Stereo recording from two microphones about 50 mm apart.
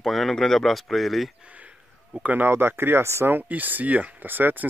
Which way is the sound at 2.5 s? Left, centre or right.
Right.